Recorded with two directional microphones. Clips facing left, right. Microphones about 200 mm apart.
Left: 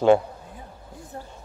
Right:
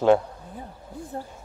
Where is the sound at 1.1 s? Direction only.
35° right (ahead or behind).